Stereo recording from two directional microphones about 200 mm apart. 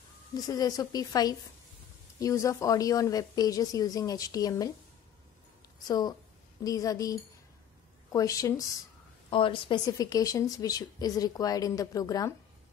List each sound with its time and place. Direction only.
0.5 s a woman's voice: 20° left (ahead or behind)
5.9 s a woman's voice: 20° left (ahead or behind)